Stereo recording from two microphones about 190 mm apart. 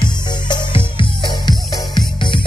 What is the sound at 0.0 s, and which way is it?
Music, 25° left (ahead or behind).